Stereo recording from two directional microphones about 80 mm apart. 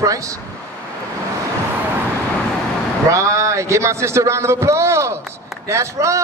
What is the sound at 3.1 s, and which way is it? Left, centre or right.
A man's voice, right.